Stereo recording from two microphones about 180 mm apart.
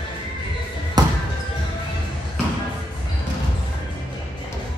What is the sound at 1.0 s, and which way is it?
Basketball bounce, 20° right (ahead or behind).